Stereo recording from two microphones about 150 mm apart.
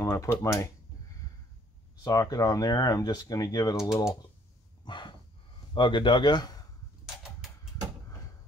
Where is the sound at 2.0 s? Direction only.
25° left (ahead or behind).